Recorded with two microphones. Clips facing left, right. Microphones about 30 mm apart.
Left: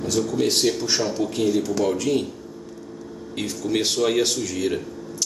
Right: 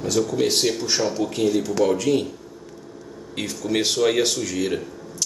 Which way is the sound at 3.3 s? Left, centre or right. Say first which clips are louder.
Even; centre.